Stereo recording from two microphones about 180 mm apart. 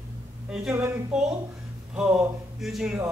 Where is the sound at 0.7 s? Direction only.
15° right (ahead or behind).